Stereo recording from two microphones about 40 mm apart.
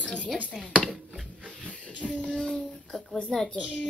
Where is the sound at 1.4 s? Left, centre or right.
Right.